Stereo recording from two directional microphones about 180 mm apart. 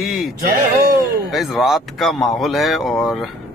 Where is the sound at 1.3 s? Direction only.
Centre (ahead or behind).